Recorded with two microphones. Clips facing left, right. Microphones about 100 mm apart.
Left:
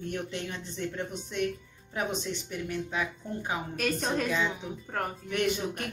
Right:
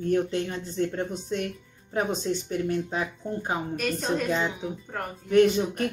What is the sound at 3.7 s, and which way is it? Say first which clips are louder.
Speech: right 1 dB; centre (ahead or behind).